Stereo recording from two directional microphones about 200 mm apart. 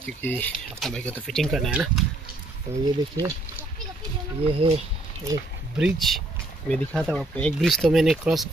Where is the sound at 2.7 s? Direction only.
15° right (ahead or behind).